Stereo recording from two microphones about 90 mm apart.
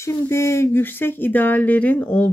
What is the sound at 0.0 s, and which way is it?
Speech, 30° left (ahead or behind).